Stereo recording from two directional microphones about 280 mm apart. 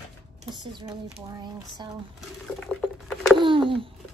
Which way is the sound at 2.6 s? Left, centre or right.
Centre.